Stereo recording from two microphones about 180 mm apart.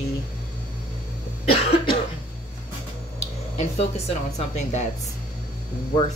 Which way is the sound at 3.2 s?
35° left (ahead or behind).